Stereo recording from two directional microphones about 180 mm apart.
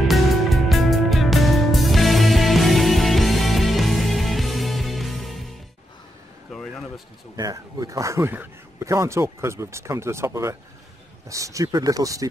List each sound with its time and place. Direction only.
0.1 s music: centre (ahead or behind)
6.5 s a sound: 5° left (ahead or behind)
7.3 s speech: 20° right (ahead or behind)